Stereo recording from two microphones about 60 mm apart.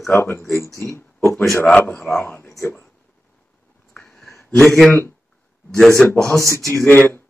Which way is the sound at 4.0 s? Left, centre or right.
Centre.